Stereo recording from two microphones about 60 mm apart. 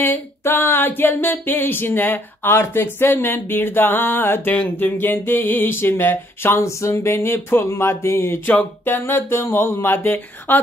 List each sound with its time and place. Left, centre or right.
0.0 s a sound: left
2.6 s speech: left
6.6 s speech: left
8.5 s speech: left